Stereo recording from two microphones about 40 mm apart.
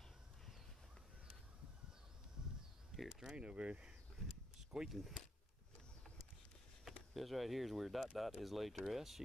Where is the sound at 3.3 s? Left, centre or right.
Right.